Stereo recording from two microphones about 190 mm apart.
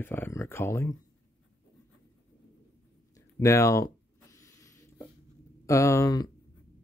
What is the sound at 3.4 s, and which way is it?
Speech, 15° left (ahead or behind).